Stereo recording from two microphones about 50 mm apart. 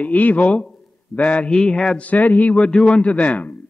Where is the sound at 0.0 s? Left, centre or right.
Left.